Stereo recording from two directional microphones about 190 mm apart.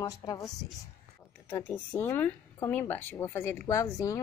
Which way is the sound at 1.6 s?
10° left (ahead or behind).